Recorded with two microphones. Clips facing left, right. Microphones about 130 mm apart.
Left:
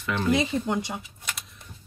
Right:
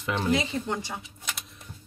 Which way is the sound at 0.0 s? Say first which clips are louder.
Left 2 dB; 20° right (ahead or behind).